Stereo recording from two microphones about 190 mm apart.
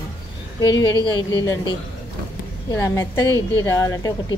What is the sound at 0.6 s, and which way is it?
Dishes, 20° left (ahead or behind).